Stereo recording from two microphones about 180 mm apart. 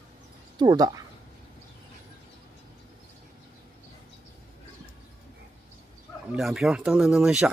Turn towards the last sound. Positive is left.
turn(degrees=-5)  # may be behind; listen again after turning